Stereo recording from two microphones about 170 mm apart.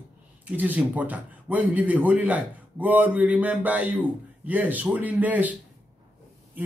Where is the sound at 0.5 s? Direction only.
10° right (ahead or behind).